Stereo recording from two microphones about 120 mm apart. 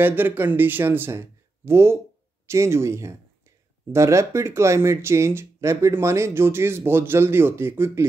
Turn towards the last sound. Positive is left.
turn(degrees=-20)  # may be behind; listen again after turning